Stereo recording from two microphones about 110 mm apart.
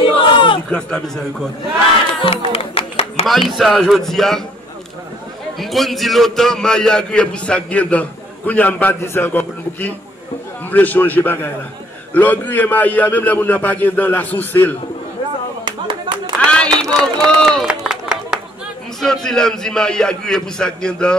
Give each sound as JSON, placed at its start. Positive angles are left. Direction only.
{"t": 0.0, "sound": "a sound", "side_deg": 50}
{"t": 0.7, "sound": "a man's voice", "side_deg": 5}
{"t": 2.2, "sound": "music", "side_deg": 55}
{"t": 3.3, "sound": "a man's voice", "side_deg": 0}
{"t": 5.6, "sound": "a man's voice", "side_deg": 0}
{"t": 15.6, "sound": "clapping", "side_deg": -45}
{"t": 16.4, "sound": "a sound", "side_deg": 10}
{"t": 16.9, "sound": "run", "side_deg": 5}
{"t": 19.2, "sound": "a man's voice", "side_deg": 5}